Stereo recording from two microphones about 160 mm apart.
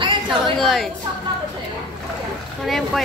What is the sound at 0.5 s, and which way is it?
Speech, centre (ahead or behind).